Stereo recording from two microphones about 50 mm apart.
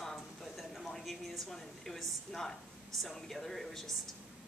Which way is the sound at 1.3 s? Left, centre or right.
Centre.